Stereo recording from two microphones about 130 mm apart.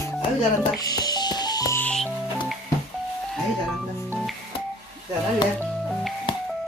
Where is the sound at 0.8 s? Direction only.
30° left (ahead or behind).